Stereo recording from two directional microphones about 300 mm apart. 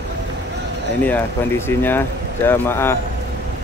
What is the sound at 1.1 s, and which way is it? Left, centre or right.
Speech, centre.